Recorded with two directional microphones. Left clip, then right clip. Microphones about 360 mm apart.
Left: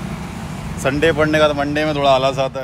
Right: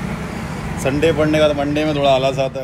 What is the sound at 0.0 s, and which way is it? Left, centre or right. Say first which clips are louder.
Vehicle: right 3 dB; centre.